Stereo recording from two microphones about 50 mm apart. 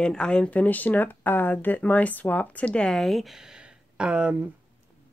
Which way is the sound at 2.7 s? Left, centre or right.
Centre.